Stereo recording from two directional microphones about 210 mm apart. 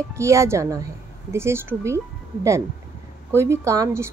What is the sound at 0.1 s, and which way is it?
Speech, 15° right (ahead or behind).